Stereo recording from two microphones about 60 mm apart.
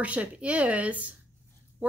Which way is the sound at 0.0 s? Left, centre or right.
Right.